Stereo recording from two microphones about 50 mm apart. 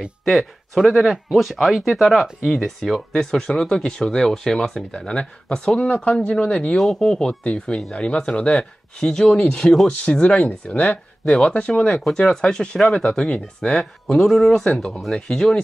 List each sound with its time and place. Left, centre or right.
0.2 s speech: centre
12.9 s speech: left
14.9 s speech: centre
15.1 s speech: centre